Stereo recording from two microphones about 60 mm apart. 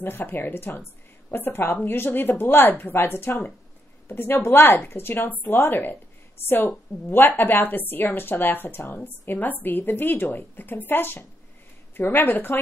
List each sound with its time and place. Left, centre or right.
0.0 s a woman's voice: left